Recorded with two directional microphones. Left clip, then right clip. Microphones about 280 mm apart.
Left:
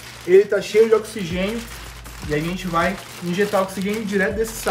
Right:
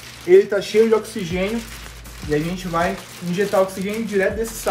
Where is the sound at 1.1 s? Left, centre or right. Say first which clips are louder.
Right 1 dB; centre.